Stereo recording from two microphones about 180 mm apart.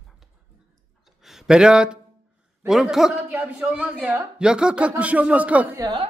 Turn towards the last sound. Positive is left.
turn(degrees=-25)  # may be behind; listen again after turning